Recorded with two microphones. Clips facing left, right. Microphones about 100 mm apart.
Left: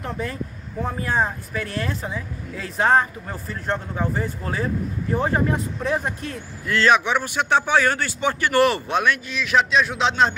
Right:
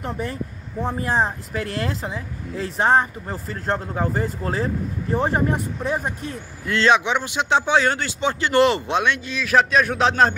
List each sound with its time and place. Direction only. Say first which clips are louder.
0.0 s speech: right 1 dB; 25° right (ahead or behind)
5.9 s speech: even; 10° right (ahead or behind)
6.6 s speech: even; 25° right (ahead or behind)
9.4 s a man's voice: right 2 dB; 40° right (ahead or behind)